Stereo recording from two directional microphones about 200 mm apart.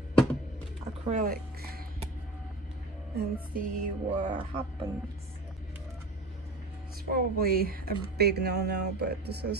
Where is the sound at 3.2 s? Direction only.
45° right (ahead or behind).